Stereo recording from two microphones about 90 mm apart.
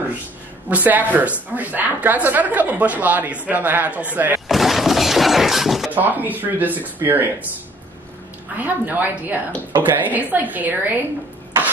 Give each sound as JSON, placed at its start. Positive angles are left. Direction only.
{"t": 0.7, "sound": "a woman's voice", "side_deg": -20}
{"t": 4.5, "sound": "shatter", "side_deg": 0}
{"t": 5.9, "sound": "speech", "side_deg": -20}
{"t": 8.5, "sound": "speech", "side_deg": -20}